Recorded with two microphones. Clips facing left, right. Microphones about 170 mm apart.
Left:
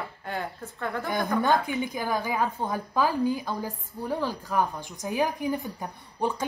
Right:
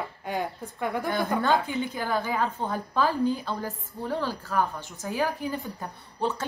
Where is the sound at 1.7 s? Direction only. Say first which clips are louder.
Even; 15° left (ahead or behind).